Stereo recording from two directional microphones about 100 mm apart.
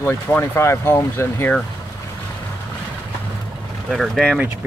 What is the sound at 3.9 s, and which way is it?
Speech, centre (ahead or behind).